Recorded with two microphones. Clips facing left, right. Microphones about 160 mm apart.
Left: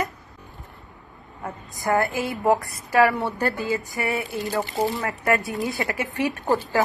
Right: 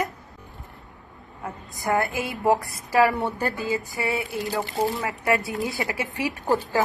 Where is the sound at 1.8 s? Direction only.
20° right (ahead or behind).